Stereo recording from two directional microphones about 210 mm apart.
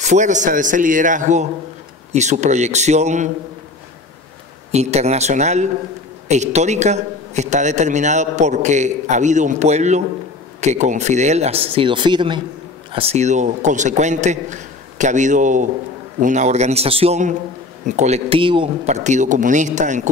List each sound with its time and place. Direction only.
0.0 s a man's voice: 35° right (ahead or behind)
4.6 s a man's voice: 30° right (ahead or behind)